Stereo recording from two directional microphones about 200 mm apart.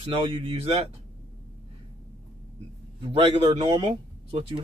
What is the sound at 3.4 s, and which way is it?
Speech, 25° right (ahead or behind).